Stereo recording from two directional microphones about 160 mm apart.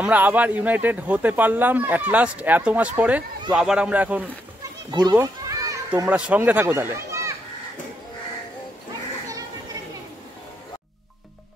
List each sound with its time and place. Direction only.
0.0 s speech: 10° right (ahead or behind)
4.9 s children playing: 20° right (ahead or behind)
6.0 s a child's voice: 10° right (ahead or behind)